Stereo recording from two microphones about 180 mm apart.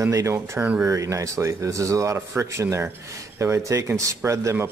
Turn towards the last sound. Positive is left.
turn(degrees=-15)  # may be behind; listen again after turning